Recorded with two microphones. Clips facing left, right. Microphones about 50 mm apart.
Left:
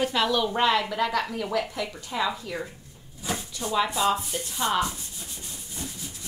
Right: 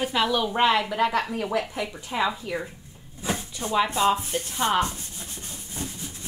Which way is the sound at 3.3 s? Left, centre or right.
Right.